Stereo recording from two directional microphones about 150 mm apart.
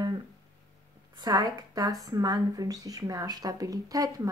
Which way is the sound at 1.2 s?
25° right (ahead or behind).